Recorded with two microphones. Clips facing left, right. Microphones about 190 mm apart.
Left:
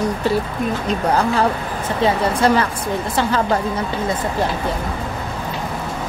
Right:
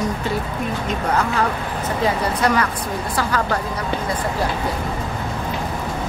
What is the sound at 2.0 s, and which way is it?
A woman's voice, 25° left (ahead or behind).